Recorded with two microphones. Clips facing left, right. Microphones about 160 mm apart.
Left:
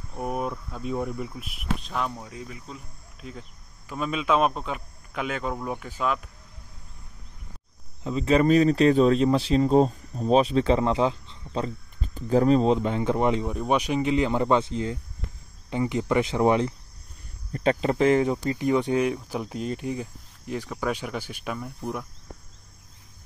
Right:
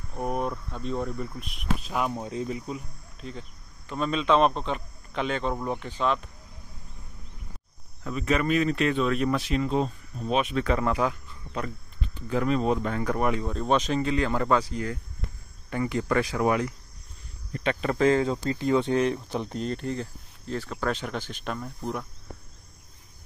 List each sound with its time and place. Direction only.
0.1 s speech: centre (ahead or behind)
2.1 s speech: 25° right (ahead or behind)
3.2 s speech: 5° left (ahead or behind)
8.0 s speech: 25° left (ahead or behind)
12.0 s speech: 40° left (ahead or behind); by 22.0 s 5° left (ahead or behind)